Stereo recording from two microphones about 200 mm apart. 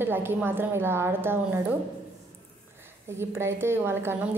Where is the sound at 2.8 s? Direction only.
10° right (ahead or behind).